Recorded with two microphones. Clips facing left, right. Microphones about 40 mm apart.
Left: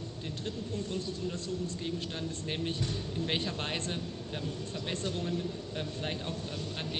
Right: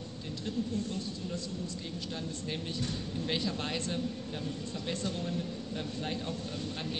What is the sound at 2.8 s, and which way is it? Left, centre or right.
Speech, left.